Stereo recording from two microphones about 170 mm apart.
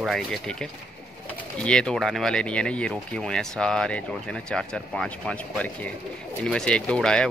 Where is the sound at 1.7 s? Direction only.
5° left (ahead or behind).